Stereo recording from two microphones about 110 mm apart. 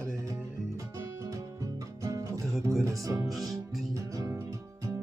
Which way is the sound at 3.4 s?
35° right (ahead or behind).